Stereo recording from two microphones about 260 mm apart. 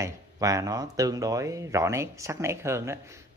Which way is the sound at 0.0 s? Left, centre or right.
Centre.